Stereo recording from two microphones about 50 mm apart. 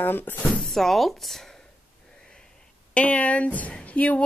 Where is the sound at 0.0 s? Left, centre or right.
Left.